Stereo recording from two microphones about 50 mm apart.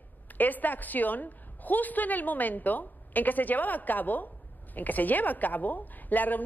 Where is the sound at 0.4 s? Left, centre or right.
Left.